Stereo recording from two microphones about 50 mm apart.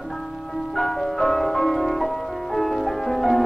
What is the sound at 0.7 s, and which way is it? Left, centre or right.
Music, centre.